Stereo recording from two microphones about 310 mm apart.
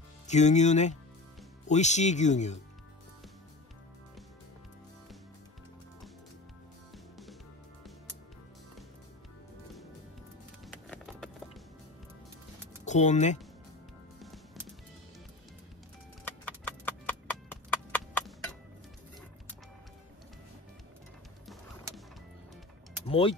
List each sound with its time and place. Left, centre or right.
0.3 s speech: left
10.6 s music: centre
12.8 s speech: left
16.3 s clip-clop: centre
23.0 s vehicle: centre